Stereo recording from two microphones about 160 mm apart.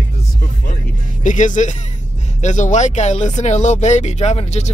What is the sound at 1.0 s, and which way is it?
Speech, 50° left (ahead or behind).